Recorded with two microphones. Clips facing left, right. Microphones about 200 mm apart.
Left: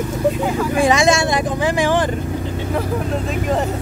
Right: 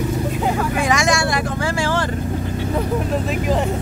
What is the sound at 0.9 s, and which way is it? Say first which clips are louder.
Vehicle: left 3 dB; 25° left (ahead or behind).